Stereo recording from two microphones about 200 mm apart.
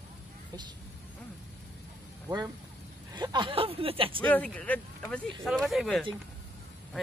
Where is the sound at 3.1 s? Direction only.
20° right (ahead or behind).